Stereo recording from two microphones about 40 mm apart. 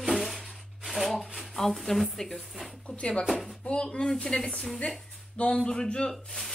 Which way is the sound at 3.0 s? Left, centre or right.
Left.